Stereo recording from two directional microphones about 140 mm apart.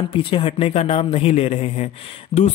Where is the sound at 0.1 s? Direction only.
40° left (ahead or behind).